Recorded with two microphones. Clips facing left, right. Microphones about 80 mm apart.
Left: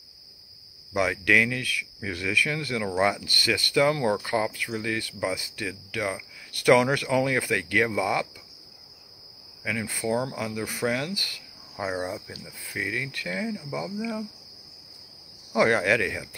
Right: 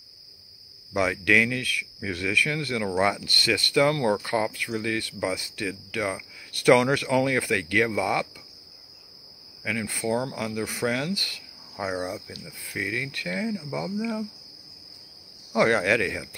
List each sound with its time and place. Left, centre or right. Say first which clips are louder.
0.9 s speech: even; centre
5.7 s speech: right 1 dB; centre
9.8 s speech: even; centre
11.7 s cricket: even; centre
12.0 s speech: even; centre
15.5 s speech: even; centre